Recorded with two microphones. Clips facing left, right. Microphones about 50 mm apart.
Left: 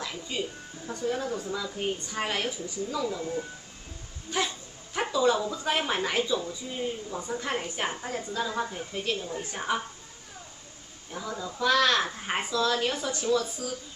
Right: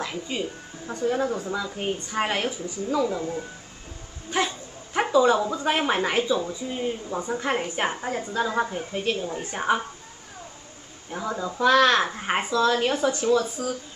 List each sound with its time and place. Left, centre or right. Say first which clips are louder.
0.0 s speech: right 4 dB; right
11.1 s speech: right 6 dB; right